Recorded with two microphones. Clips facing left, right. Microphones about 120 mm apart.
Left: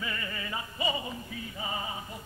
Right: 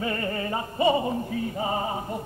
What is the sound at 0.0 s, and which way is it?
Music, 45° right (ahead or behind).